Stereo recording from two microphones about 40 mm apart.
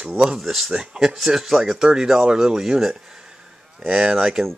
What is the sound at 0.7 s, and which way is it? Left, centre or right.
Speech, centre.